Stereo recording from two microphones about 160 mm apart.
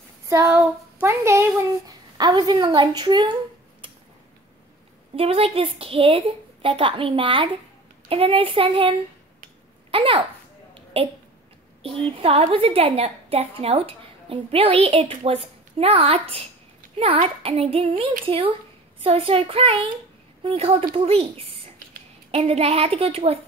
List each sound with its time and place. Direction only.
0.3 s a sound: 15° right (ahead or behind)
1.0 s a woman's voice: 15° right (ahead or behind)
5.1 s a woman's voice: 35° right (ahead or behind)
22.3 s a woman's voice: 40° right (ahead or behind)